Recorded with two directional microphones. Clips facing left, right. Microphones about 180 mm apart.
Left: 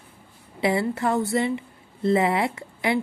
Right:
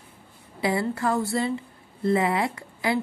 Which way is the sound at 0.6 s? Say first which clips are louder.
Left 2 dB; 25° left (ahead or behind).